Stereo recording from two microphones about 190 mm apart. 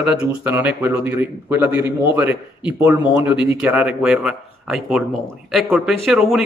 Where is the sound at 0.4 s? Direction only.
10° right (ahead or behind).